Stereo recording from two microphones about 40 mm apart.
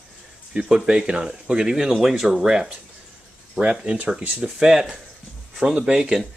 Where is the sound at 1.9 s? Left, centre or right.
Centre.